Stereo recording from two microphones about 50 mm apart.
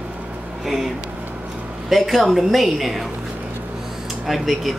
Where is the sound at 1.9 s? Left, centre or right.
Centre.